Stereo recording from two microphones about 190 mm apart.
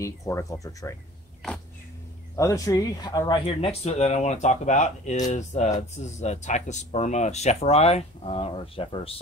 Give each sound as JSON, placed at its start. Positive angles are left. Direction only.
{"t": 0.0, "sound": "speech", "side_deg": 15}
{"t": 2.3, "sound": "speech", "side_deg": 15}
{"t": 3.4, "sound": "speech", "side_deg": 35}